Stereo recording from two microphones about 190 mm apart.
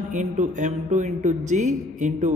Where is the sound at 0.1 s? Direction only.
40° right (ahead or behind).